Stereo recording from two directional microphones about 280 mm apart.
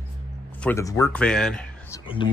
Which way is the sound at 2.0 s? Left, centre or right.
Centre.